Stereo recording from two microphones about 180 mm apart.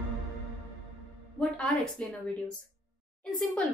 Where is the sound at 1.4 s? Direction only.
5° left (ahead or behind).